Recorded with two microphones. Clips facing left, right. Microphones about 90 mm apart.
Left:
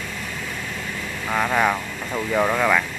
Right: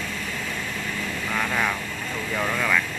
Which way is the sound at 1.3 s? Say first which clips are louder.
Left 6 dB; 30° left (ahead or behind).